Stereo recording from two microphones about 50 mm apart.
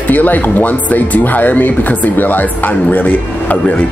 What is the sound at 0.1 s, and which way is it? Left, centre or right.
Speech, left.